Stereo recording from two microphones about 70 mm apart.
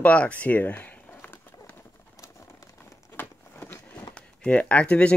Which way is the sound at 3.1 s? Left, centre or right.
Left.